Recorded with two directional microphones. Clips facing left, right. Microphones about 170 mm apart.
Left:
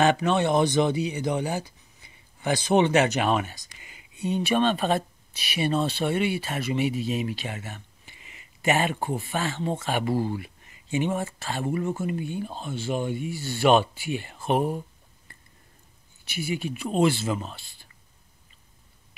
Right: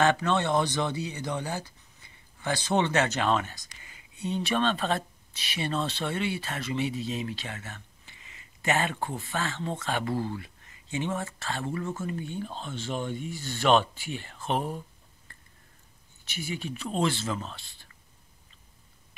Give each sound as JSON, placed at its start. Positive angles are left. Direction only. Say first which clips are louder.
{"t": 0.0, "sound": "speech", "louder": "left 3 dB", "side_deg": 15}
{"t": 16.3, "sound": "speech", "louder": "left 5 dB", "side_deg": 10}